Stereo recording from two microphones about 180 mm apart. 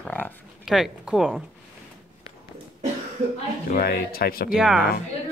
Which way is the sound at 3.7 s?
55° left (ahead or behind).